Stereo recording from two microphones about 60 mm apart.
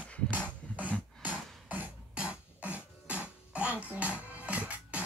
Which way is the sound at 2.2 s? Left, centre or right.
Right.